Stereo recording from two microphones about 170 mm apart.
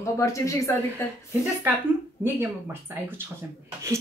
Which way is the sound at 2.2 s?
15° right (ahead or behind).